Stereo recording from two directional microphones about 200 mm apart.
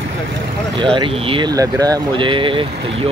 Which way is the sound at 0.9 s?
25° right (ahead or behind).